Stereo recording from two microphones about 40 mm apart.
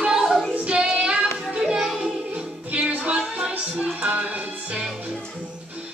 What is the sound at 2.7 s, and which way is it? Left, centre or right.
Music, right.